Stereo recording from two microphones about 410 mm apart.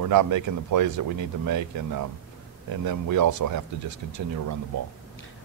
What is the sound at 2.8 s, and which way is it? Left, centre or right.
Speech, right.